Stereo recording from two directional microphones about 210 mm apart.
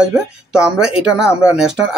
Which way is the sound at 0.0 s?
5° right (ahead or behind).